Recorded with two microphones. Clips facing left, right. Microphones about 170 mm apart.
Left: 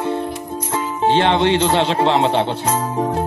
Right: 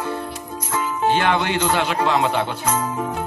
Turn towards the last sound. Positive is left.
turn(degrees=35)  # may be behind; listen again after turning